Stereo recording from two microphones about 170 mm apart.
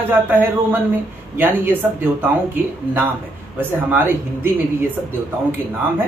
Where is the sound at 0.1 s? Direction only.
10° right (ahead or behind).